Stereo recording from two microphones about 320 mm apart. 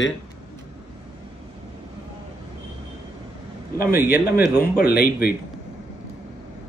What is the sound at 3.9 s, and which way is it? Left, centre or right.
Speech, centre.